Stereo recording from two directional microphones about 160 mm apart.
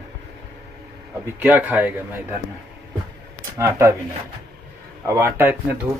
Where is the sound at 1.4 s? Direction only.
10° right (ahead or behind).